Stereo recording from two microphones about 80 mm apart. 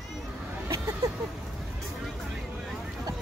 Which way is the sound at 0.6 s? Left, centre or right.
Right.